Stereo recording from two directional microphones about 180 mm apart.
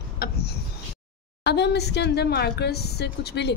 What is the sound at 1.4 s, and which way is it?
Speech, 70° left (ahead or behind).